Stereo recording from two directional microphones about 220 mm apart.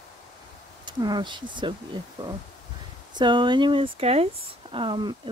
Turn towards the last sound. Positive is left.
turn(degrees=-20)  # may be behind; listen again after turning